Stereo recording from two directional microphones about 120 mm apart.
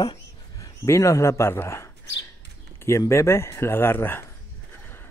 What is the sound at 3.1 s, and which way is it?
Speech, 20° left (ahead or behind).